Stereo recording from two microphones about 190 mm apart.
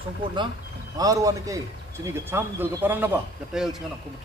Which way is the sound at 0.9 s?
20° right (ahead or behind).